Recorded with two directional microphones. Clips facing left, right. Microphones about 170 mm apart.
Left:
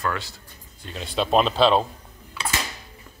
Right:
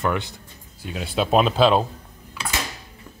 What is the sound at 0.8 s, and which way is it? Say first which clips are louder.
Speech: right 2 dB; 5° right (ahead or behind).